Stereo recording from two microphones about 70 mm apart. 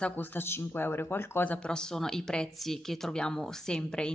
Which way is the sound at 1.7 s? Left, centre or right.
Centre.